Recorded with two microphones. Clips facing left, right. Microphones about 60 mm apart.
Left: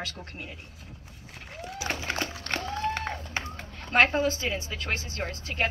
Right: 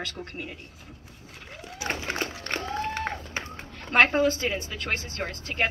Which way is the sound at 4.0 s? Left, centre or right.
Right.